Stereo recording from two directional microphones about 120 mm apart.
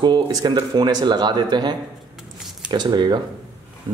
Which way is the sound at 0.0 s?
35° right (ahead or behind).